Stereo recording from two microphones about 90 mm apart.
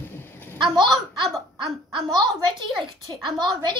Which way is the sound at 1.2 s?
Centre (ahead or behind).